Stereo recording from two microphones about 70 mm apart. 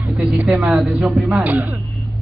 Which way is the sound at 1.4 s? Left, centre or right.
Right.